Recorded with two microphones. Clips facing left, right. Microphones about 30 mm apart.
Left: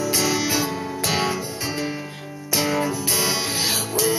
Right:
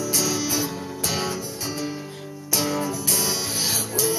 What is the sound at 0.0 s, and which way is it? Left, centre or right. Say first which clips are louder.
Music: left 3 dB; left.